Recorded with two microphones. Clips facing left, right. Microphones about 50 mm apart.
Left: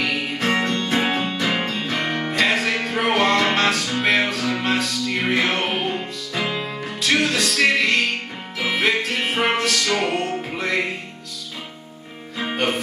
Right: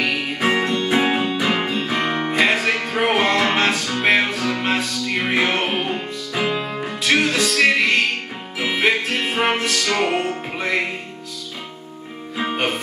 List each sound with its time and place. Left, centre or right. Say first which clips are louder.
0.0 s music: right 2 dB; centre
4.0 s music: right 2 dB; centre
4.6 s music: even; centre
5.6 s music: right 1 dB; centre
7.4 s music: right 2 dB; centre
8.5 s music: right 1 dB; centre